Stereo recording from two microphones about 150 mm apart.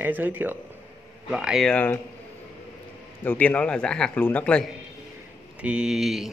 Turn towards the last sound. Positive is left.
turn(degrees=0)  # may be behind; listen again after turning